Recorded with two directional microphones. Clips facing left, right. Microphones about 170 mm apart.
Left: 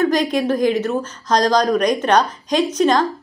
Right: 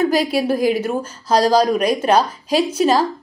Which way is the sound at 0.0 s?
10° right (ahead or behind).